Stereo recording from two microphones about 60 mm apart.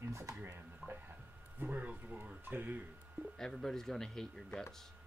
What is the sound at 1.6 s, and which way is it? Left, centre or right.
Speech, right.